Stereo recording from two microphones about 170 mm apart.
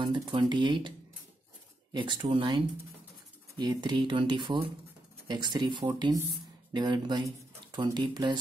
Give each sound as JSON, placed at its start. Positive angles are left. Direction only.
{"t": 0.3, "sound": "speech", "side_deg": -25}